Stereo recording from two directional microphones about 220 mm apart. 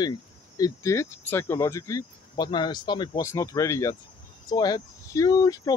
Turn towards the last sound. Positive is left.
turn(degrees=15)  # may be behind; listen again after turning